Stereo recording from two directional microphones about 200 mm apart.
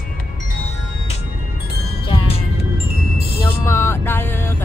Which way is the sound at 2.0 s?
25° left (ahead or behind).